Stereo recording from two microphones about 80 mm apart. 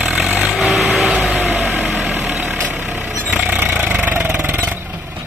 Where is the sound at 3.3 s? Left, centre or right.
Centre.